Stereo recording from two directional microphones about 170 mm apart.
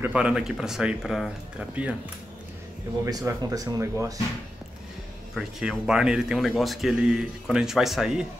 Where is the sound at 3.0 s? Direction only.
20° right (ahead or behind).